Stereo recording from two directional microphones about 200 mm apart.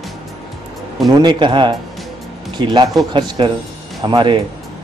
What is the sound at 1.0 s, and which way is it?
Speech, 20° right (ahead or behind).